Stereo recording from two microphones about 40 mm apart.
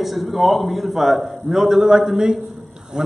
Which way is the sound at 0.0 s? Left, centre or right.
Centre.